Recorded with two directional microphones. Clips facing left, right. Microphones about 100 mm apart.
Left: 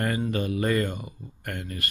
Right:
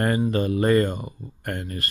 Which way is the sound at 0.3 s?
35° right (ahead or behind).